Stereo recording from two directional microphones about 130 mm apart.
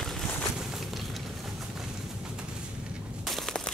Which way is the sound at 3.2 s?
Centre (ahead or behind).